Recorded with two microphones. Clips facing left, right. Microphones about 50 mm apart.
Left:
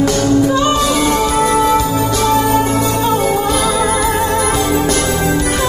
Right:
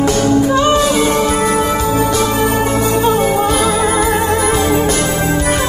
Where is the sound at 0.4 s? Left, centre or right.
Centre.